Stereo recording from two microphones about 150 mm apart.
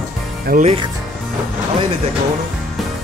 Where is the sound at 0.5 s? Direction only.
70° right (ahead or behind).